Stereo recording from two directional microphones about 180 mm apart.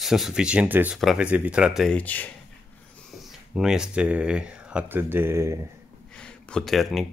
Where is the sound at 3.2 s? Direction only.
Centre (ahead or behind).